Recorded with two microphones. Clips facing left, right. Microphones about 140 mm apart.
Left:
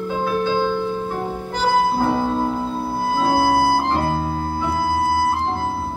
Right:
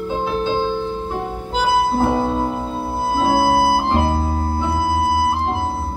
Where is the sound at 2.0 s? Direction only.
20° right (ahead or behind).